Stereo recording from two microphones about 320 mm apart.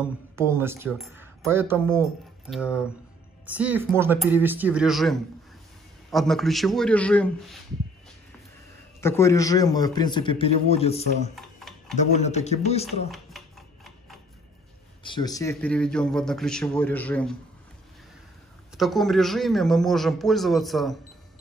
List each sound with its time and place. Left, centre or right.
0.0 s a man's voice: centre
9.0 s a man's voice: centre
13.1 s a sound: centre
15.0 s a man's voice: centre
18.8 s a man's voice: centre